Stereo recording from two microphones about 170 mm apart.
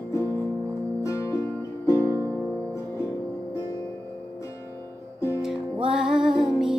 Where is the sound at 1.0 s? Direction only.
20° left (ahead or behind).